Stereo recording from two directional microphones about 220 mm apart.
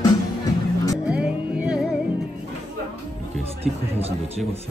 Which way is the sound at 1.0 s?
5° right (ahead or behind).